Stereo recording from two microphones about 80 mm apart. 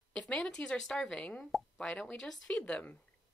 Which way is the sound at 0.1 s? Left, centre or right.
Centre.